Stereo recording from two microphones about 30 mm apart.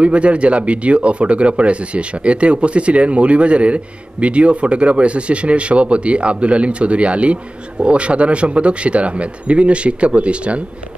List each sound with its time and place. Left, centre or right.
0.0 s speech: right